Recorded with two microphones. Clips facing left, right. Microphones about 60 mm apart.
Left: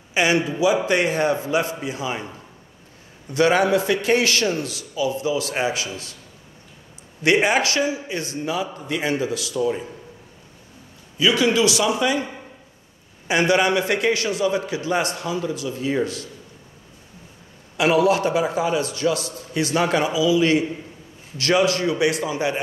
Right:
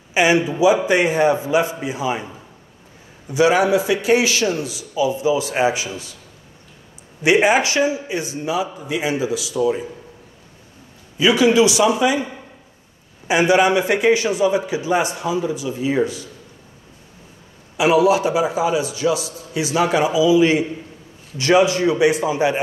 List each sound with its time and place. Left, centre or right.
0.1 s a man's voice: right
7.2 s a man's voice: right
11.1 s a man's voice: right
13.3 s a man's voice: centre
17.7 s a man's voice: centre